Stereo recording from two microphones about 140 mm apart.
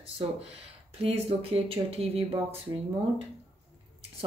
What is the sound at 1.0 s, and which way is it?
Speech, 45° right (ahead or behind).